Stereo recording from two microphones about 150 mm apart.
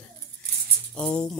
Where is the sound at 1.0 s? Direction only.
5° left (ahead or behind).